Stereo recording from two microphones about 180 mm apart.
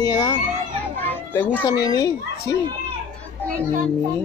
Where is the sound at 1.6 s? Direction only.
20° left (ahead or behind).